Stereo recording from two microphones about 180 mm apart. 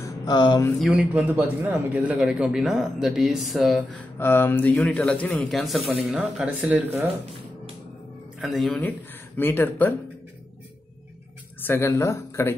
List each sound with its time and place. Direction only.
0.0 s mantra: 20° left (ahead or behind)
0.7 s a man's voice: 5° right (ahead or behind)
4.2 s a man's voice: 10° left (ahead or behind); by 6.8 s 5° right (ahead or behind)
8.4 s a man's voice: centre (ahead or behind)
11.6 s speech: 15° left (ahead or behind)